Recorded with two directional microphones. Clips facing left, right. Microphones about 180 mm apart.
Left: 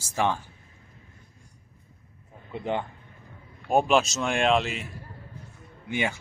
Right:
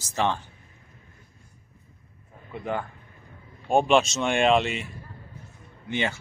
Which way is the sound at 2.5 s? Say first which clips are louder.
Left 1 dB; 25° left (ahead or behind).